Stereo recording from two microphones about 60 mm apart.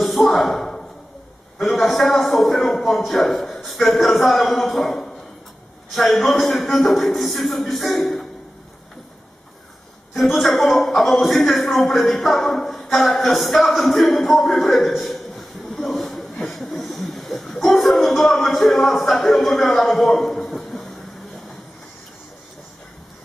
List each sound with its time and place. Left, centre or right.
0.4 s a man's voice: centre
1.7 s a man's voice: centre
5.9 s a man's voice: centre
10.1 s a man's voice: centre
12.9 s speech: left
13.2 s a man's voice: centre
15.9 s a sound: centre
16.4 s music: centre
19.6 s a man's voice: centre